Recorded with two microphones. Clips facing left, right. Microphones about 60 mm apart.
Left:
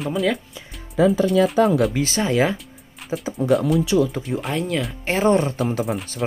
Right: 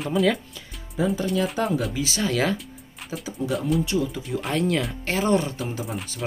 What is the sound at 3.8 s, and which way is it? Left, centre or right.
Speech, left.